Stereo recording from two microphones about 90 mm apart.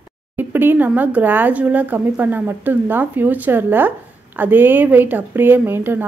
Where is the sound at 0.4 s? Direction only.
25° right (ahead or behind).